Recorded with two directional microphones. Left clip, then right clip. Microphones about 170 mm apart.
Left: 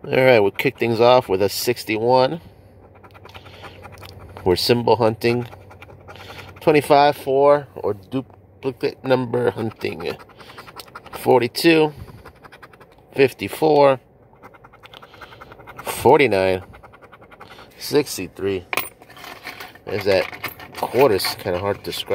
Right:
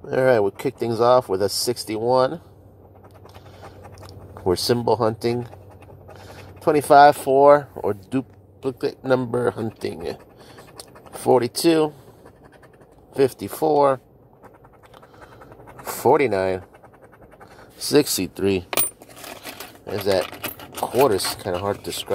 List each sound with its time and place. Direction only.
0.0 s speech: 10° left (ahead or behind)
4.0 s a sound: 10° left (ahead or behind)
4.6 s speech: 10° left (ahead or behind)
6.6 s speech: 10° left (ahead or behind)
6.9 s speech: 5° right (ahead or behind)
8.6 s speech: 5° left (ahead or behind)
9.8 s scratch: 5° left (ahead or behind)
13.1 s speech: 10° left (ahead or behind)
16.1 s speech: 15° left (ahead or behind)
17.7 s speech: 15° right (ahead or behind)
18.0 s coin: 35° right (ahead or behind)
19.9 s speech: centre (ahead or behind)
20.3 s a sound: 40° right (ahead or behind)
21.0 s speech: centre (ahead or behind)